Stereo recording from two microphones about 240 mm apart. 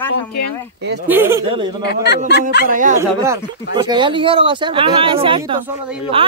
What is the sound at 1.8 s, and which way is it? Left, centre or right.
Speech, left.